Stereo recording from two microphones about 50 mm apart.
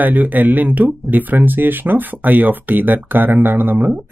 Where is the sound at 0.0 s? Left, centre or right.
Right.